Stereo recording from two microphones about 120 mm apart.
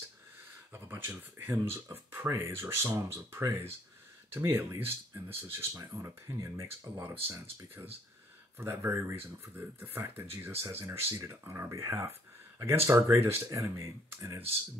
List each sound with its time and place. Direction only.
0.7 s speech: 20° right (ahead or behind)